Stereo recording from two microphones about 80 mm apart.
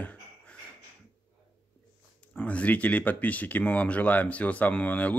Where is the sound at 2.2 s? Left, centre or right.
Centre.